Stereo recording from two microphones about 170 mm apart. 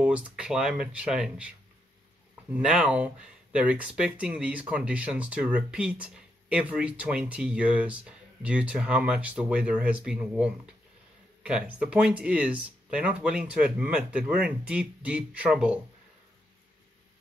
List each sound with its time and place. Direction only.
0.0 s speech: 5° right (ahead or behind)
2.5 s speech: 5° right (ahead or behind)